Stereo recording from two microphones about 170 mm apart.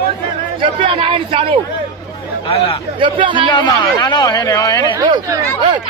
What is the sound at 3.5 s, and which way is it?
Speech, 25° left (ahead or behind).